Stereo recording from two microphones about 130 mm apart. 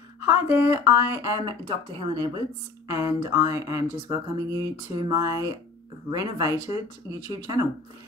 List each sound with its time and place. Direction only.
0.2 s speech: 20° right (ahead or behind)
1.4 s speech: 40° right (ahead or behind)
2.9 s speech: 20° right (ahead or behind)